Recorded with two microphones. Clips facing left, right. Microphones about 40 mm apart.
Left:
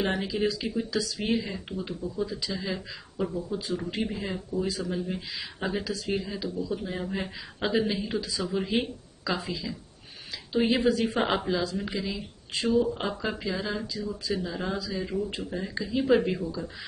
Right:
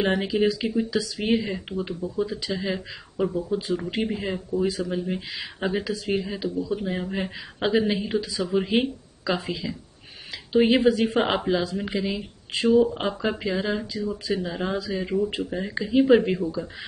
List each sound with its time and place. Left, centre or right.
0.0 s speech: right
1.2 s speech: right
10.8 s a woman's voice: right
11.1 s speech: centre